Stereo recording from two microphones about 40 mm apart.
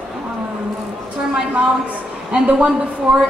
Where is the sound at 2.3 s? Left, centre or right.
Right.